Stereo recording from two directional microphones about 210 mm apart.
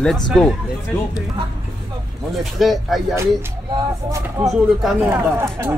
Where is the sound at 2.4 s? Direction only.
Centre (ahead or behind).